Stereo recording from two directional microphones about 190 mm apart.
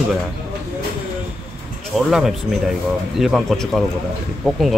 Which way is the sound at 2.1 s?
Centre (ahead or behind).